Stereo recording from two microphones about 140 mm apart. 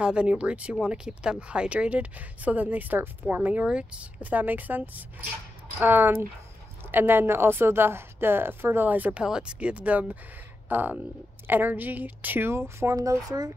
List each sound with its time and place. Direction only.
0.0 s speech: 10° right (ahead or behind); by 13.5 s 25° right (ahead or behind)